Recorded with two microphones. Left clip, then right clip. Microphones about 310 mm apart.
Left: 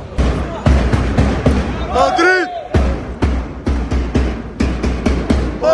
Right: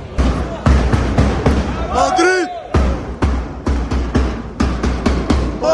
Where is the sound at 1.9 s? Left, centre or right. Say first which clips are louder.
Left 2 dB; centre.